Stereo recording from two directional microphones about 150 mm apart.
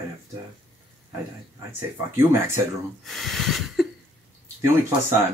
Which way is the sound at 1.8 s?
15° right (ahead or behind).